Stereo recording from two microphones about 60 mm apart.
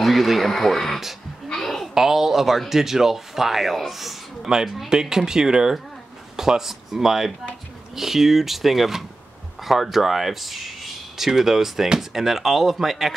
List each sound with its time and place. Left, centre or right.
0.0 s speech: centre
1.5 s a sound: centre
2.0 s speech: centre